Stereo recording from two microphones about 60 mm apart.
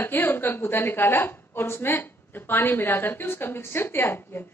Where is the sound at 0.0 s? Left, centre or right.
Left.